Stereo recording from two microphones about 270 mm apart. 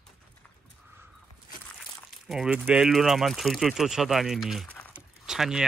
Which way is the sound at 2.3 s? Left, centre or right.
Centre.